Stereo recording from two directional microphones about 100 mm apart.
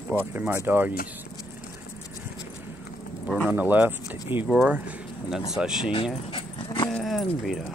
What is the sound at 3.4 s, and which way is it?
Speech, 20° right (ahead or behind).